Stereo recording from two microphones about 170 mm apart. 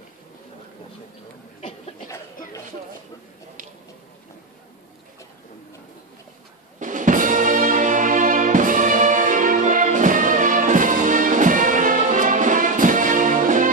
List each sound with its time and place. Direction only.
6.8 s music: 50° right (ahead or behind)